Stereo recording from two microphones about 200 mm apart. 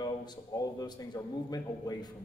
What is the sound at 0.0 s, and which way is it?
A man's voice, 20° left (ahead or behind).